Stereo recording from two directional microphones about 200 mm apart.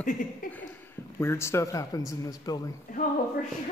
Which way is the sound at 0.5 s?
10° left (ahead or behind).